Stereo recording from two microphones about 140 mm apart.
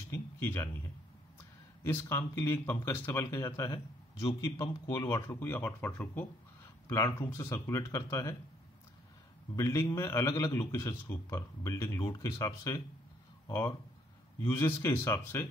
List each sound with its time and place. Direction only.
0.1 s speech: 15° left (ahead or behind)
1.8 s a man's voice: 15° left (ahead or behind)
4.2 s a man's voice: 35° left (ahead or behind)
4.8 s a man's voice: 25° left (ahead or behind)
9.6 s a man's voice: 20° left (ahead or behind)